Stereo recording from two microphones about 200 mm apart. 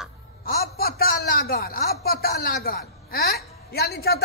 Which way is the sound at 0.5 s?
50° left (ahead or behind).